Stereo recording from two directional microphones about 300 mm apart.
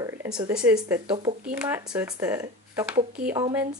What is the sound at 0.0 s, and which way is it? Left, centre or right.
Speech, centre.